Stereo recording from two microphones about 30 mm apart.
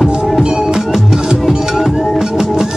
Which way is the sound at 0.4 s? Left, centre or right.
Right.